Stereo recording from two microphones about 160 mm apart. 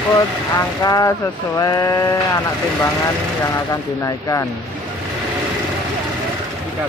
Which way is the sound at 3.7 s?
20° left (ahead or behind).